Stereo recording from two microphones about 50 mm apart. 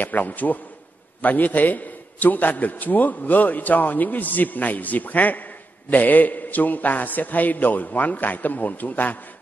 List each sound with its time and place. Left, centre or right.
0.0 s a man's voice: left